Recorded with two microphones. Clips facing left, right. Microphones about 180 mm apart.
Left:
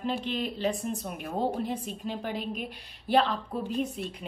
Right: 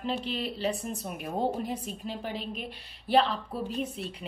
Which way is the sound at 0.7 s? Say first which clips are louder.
Left 1 dB; 5° right (ahead or behind).